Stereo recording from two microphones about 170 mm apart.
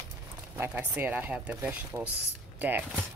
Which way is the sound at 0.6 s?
10° right (ahead or behind).